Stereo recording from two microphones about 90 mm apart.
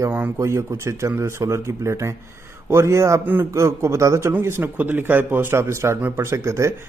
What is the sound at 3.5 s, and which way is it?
Speech, 30° right (ahead or behind).